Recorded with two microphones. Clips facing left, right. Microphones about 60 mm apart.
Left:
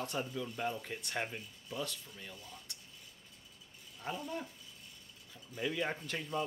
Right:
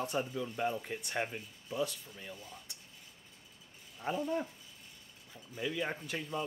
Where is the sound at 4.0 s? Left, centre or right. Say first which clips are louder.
Right 6 dB; centre.